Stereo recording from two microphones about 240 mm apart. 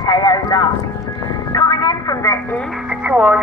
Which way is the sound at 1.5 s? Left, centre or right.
Centre.